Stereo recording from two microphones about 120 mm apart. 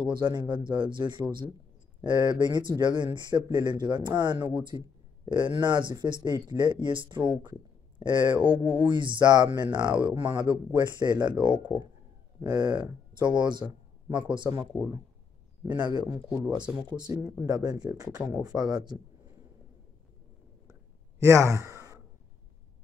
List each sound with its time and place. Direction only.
0.0 s speech: 40° right (ahead or behind)
8.5 s speech: 15° right (ahead or behind)
8.8 s speech: 40° right (ahead or behind)
15.7 s speech: 35° right (ahead or behind)
16.4 s speech: 10° right (ahead or behind)
17.5 s speech: 35° right (ahead or behind)
21.2 s speech: 25° right (ahead or behind)